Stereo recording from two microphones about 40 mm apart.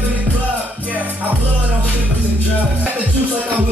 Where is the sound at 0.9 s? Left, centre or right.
Right.